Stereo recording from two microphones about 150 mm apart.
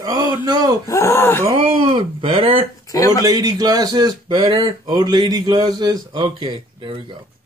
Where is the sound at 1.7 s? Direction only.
35° right (ahead or behind).